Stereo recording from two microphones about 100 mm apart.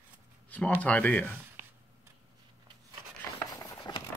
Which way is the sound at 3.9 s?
40° left (ahead or behind).